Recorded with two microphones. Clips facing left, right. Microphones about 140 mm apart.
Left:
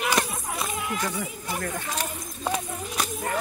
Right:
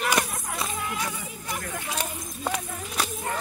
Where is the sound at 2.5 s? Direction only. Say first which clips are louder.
Left 2 dB; 15° left (ahead or behind).